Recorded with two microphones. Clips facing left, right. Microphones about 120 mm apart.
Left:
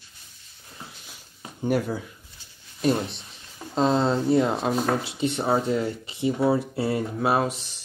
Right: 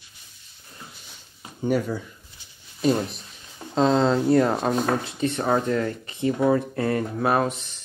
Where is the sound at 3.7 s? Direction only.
5° left (ahead or behind).